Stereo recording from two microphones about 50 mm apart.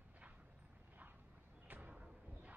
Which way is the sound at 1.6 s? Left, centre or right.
Right.